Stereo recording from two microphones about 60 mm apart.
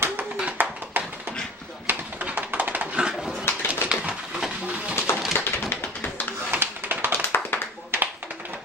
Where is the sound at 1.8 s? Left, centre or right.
Right.